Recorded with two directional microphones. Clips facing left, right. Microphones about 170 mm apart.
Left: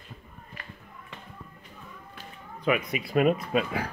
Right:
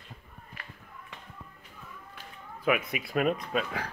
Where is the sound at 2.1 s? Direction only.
5° right (ahead or behind).